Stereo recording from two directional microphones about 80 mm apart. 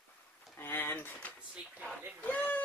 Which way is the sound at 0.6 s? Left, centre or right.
Left.